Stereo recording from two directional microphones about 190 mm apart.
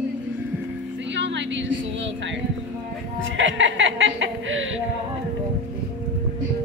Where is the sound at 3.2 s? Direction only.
85° right.